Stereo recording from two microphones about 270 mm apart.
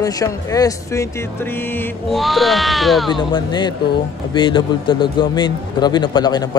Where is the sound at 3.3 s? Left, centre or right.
Centre.